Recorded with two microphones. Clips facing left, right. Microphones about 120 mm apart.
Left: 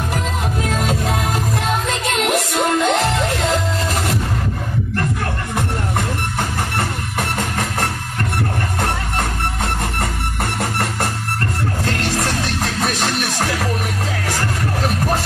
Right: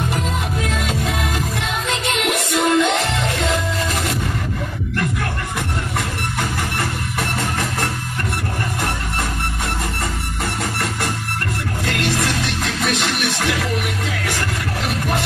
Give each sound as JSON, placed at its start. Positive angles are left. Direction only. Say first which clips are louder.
{"t": 0.7, "sound": "music", "louder": "left 2 dB", "side_deg": 40}
{"t": 12.8, "sound": "music", "louder": "right 1 dB", "side_deg": 35}